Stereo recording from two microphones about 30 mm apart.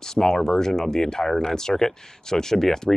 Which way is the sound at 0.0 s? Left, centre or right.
Centre.